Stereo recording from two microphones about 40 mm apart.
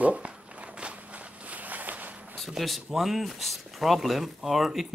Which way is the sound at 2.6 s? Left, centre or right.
Centre.